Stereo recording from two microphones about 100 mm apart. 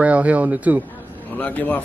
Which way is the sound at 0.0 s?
15° right (ahead or behind).